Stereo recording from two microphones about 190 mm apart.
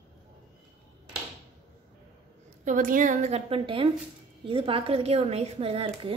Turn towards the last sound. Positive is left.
turn(degrees=-30)  # may be behind; listen again after turning